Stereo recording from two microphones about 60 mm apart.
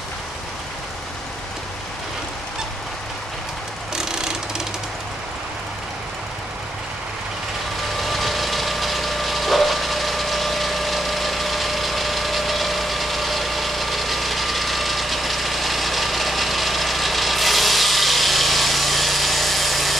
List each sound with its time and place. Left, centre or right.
3.9 s ratchet: centre
8.0 s engine: centre